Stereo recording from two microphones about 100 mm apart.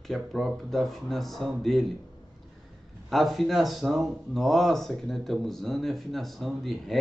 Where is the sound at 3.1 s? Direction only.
Centre (ahead or behind).